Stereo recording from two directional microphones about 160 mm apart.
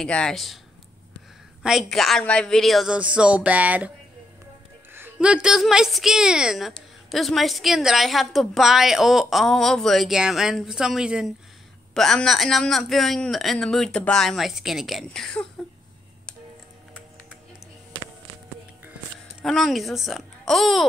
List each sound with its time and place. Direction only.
0.0 s a woman's voice: 5° left (ahead or behind)
1.6 s a woman's voice: centre (ahead or behind)
4.9 s a woman's voice: 10° right (ahead or behind)
19.4 s a woman's voice: centre (ahead or behind)